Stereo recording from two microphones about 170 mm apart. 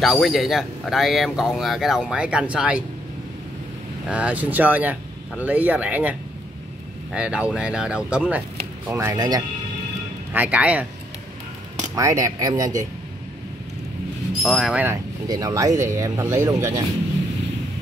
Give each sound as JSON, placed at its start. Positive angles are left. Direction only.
{"t": 0.0, "sound": "speech", "side_deg": 0}
{"t": 4.1, "sound": "speech", "side_deg": -10}
{"t": 10.3, "sound": "speech", "side_deg": -10}
{"t": 11.9, "sound": "speech", "side_deg": -20}
{"t": 14.4, "sound": "speech", "side_deg": 0}
{"t": 15.2, "sound": "speech", "side_deg": -20}